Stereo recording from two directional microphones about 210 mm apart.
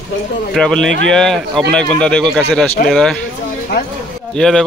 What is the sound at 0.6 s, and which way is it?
Speech, centre (ahead or behind).